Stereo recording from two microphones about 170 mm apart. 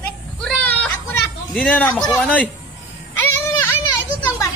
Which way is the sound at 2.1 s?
Centre (ahead or behind).